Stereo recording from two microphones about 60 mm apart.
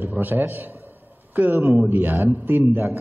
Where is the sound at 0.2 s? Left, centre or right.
Right.